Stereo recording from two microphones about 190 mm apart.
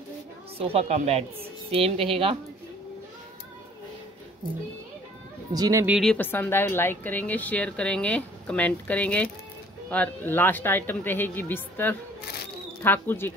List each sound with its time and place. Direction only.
0.6 s a woman's voice: 30° right (ahead or behind)
5.5 s speech: 20° right (ahead or behind)
5.9 s a woman's voice: centre (ahead or behind)
6.1 s a woman's voice: 10° left (ahead or behind)